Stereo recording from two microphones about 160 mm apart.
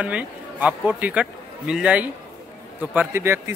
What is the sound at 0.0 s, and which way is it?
A man's voice, 10° right (ahead or behind).